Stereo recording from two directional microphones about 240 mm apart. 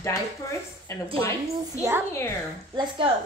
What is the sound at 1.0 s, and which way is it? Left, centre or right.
Speech, right.